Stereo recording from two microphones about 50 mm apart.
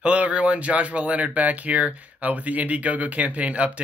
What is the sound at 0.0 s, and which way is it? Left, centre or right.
Speech, right.